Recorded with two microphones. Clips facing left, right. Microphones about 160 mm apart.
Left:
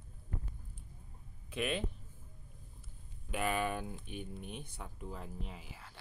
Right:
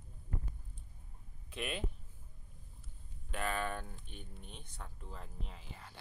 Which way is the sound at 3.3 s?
10° left (ahead or behind).